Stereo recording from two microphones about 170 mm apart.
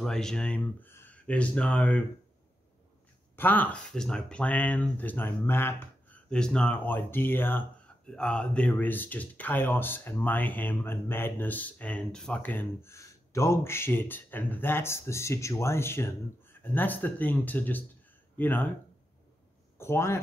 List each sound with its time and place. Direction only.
0.0 s speech: 5° left (ahead or behind)
3.3 s speech: 10° left (ahead or behind)
19.8 s speech: 15° left (ahead or behind)